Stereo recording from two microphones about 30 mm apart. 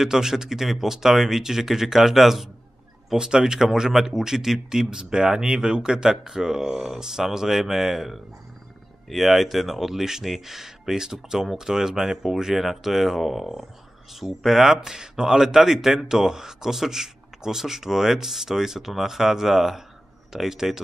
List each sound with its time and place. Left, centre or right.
0.0 s speech: centre
3.2 s speech: right
12.5 s speech: centre
14.8 s speech: right